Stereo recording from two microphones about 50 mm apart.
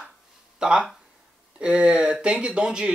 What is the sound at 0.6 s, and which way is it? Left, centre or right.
Speech, centre.